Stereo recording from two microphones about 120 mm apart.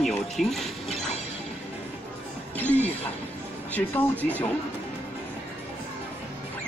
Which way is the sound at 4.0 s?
15° left (ahead or behind).